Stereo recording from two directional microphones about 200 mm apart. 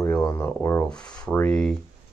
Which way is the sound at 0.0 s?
10° left (ahead or behind).